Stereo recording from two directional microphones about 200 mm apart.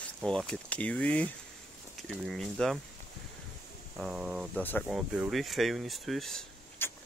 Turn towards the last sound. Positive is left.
turn(degrees=5)  # may be behind; listen again after turning